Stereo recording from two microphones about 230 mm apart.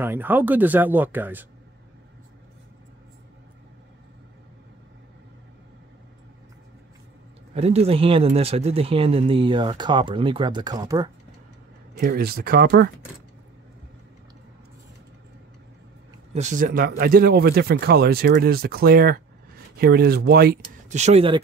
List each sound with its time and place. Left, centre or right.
0.0 s speech: centre
7.5 s speech: right
12.0 s speech: right
16.3 s speech: right